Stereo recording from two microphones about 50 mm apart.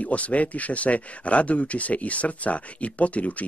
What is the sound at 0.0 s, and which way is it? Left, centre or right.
Speech, left.